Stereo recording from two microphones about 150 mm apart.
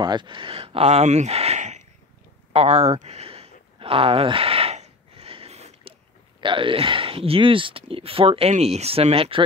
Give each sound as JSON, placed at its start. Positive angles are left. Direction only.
{"t": 0.0, "sound": "speech", "side_deg": -30}
{"t": 3.8, "sound": "a sound", "side_deg": -40}
{"t": 6.4, "sound": "speech", "side_deg": -35}